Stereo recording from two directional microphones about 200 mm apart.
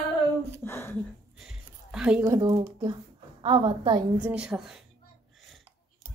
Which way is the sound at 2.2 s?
20° right (ahead or behind).